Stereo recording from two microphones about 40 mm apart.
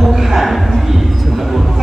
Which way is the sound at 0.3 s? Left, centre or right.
Centre.